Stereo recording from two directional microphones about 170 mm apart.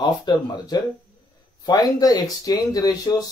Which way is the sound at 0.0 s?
25° left (ahead or behind).